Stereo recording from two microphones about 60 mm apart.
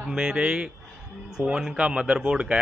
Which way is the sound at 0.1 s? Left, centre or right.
Centre.